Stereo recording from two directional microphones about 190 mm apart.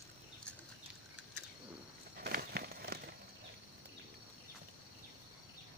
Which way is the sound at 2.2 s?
55° right (ahead or behind).